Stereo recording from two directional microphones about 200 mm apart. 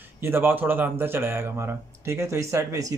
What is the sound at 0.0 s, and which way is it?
Speech, 10° right (ahead or behind).